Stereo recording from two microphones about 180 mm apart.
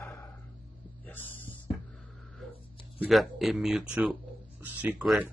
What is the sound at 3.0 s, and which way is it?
Speech, centre (ahead or behind).